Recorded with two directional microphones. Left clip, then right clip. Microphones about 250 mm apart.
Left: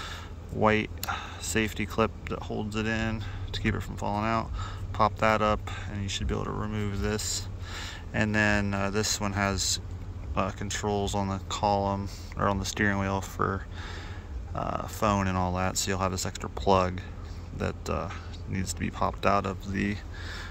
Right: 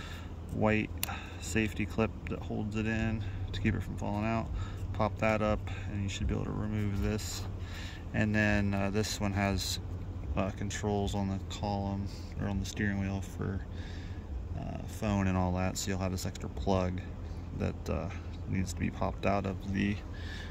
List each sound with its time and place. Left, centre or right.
0.0 s a sound: centre
1.5 s speech: centre
14.6 s speech: centre